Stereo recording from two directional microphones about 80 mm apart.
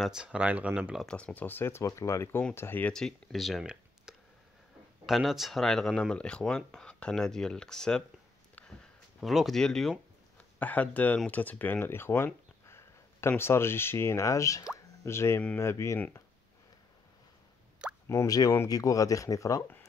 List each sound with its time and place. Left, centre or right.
0.0 s speech: centre
1.0 s speech: centre; by 2.8 s left
2.9 s speech: centre
9.2 s speech: centre
10.3 s speech: centre
12.6 s a sound: left
13.4 s speech: left
17.8 s plop: centre
18.2 s speech: left